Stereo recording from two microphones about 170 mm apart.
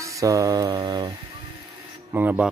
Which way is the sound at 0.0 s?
20° right (ahead or behind).